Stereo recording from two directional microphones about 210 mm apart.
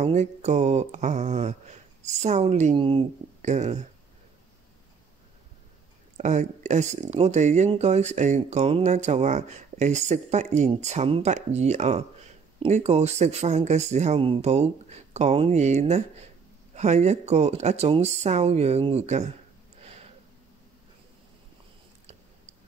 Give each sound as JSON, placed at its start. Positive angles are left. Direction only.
{"t": 0.0, "sound": "speech", "side_deg": -35}
{"t": 6.1, "sound": "speech", "side_deg": -35}